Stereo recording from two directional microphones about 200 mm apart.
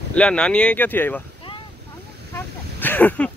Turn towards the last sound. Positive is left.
turn(degrees=10)  # may be behind; listen again after turning